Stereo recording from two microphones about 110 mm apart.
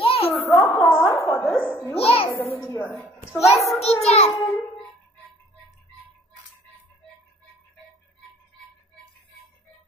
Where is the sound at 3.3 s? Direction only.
Centre (ahead or behind).